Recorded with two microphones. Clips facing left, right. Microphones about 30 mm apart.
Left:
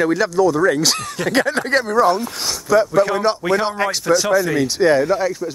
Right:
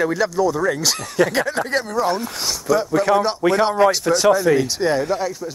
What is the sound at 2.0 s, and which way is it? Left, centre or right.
A man's voice, centre.